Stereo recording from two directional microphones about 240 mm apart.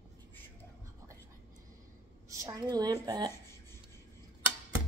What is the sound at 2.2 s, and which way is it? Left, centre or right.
A woman's voice, centre.